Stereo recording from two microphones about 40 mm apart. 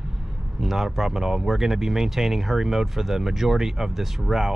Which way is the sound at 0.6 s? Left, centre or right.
Centre.